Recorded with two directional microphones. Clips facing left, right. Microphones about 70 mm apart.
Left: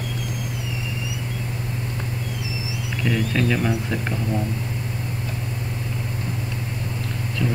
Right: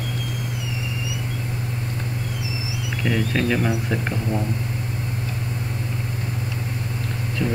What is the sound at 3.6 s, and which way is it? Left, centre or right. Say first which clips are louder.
Speech: even; centre.